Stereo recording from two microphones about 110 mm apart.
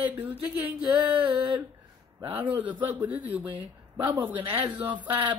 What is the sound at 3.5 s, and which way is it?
Speech, 45° right (ahead or behind).